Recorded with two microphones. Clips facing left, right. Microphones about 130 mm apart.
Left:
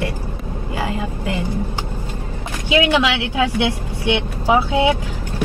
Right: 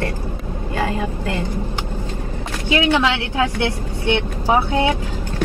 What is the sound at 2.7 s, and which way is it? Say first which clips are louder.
Speech: left 1 dB; 15° left (ahead or behind).